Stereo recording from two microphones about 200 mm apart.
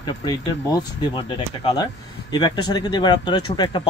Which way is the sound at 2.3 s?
20° left (ahead or behind).